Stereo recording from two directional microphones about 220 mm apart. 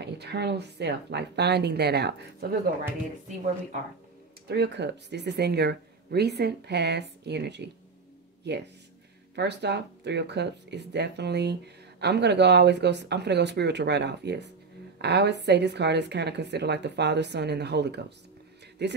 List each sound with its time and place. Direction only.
0.0 s speech: 50° right (ahead or behind)
4.5 s speech: 50° right (ahead or behind)